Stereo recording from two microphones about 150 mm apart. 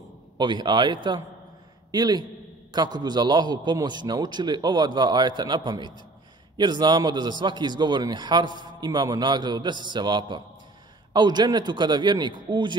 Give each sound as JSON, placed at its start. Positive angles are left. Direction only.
{"t": 0.4, "sound": "a man's voice", "side_deg": -30}